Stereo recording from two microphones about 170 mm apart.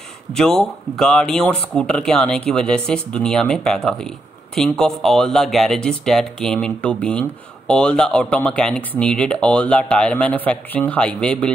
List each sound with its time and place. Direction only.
0.3 s speech: 5° left (ahead or behind)